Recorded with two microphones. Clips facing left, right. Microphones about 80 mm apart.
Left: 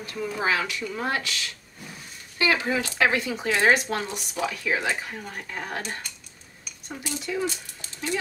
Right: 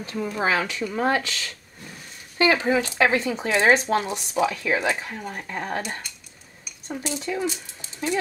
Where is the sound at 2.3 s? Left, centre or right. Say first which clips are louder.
Right 4 dB; right.